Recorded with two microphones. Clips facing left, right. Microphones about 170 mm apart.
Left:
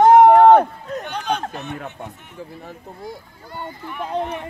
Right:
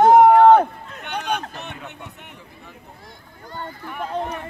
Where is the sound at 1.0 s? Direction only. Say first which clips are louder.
Left 1 dB; 65° right (ahead or behind).